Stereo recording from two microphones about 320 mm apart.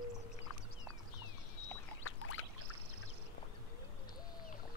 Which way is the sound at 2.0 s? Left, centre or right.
Left.